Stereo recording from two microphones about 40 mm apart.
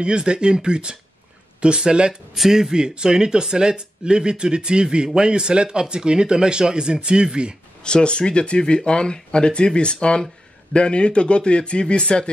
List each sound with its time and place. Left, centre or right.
0.0 s speech: right
2.3 s speech: centre; by 7.5 s right
7.8 s speech: left